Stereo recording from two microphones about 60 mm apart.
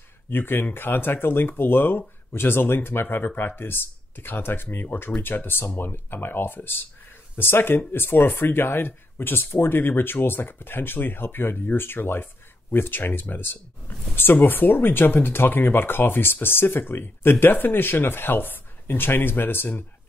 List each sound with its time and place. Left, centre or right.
0.3 s speech: left